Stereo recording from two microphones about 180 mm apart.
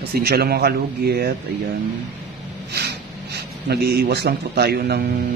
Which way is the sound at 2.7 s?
65° right (ahead or behind).